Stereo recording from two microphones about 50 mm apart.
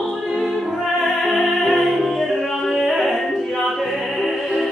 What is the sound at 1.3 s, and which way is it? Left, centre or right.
Music, centre.